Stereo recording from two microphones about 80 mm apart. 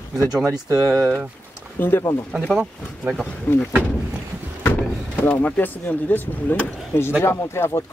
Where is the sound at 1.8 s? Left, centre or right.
Left.